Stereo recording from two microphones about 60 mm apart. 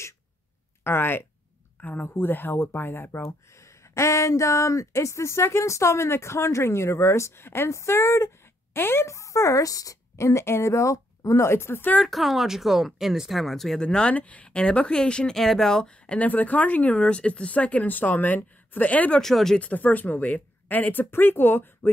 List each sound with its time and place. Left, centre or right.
0.8 s speech: left
9.0 s a woman's voice: left
12.0 s speech: centre
13.7 s speech: centre
19.1 s speech: centre
19.6 s speech: left